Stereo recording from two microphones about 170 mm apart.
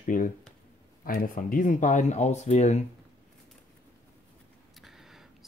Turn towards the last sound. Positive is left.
turn(degrees=0)  # may be behind; listen again after turning